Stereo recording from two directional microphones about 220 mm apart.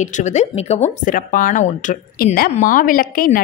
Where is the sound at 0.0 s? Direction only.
30° left (ahead or behind).